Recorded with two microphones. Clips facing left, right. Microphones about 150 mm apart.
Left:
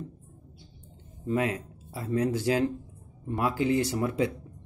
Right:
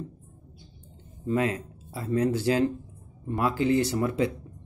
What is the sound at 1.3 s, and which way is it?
Mantra, 10° left (ahead or behind).